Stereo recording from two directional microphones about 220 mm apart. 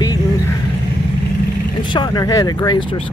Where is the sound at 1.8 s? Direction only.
20° left (ahead or behind).